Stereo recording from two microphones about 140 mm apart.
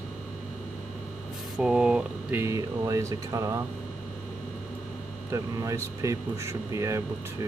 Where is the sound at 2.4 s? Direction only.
25° right (ahead or behind).